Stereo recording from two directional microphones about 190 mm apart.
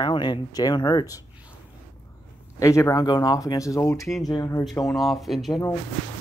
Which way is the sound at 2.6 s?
15° left (ahead or behind).